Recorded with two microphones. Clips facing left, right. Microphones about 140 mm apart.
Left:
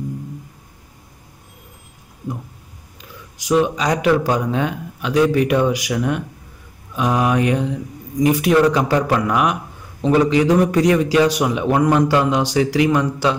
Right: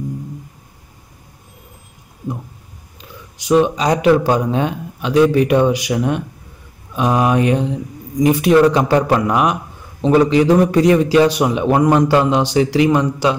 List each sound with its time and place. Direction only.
3.3 s a man's voice: 25° right (ahead or behind)